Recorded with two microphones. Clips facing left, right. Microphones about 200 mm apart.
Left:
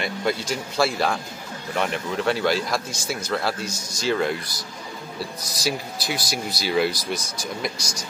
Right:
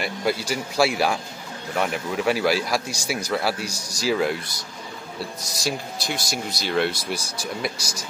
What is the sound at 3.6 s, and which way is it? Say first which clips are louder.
Speech: left 1 dB; 35° right (ahead or behind).